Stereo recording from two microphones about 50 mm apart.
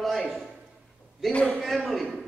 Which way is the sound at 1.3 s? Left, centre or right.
Left.